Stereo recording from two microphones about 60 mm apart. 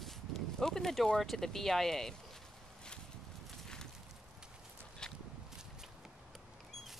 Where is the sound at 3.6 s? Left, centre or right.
Centre.